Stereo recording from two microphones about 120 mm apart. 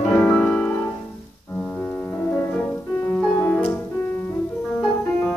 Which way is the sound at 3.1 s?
10° left (ahead or behind).